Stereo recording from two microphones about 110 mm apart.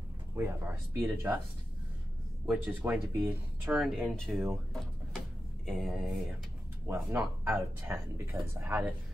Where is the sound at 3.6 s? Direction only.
Centre (ahead or behind).